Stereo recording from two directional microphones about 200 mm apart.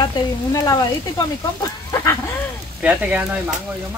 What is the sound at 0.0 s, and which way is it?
Speech, 15° left (ahead or behind).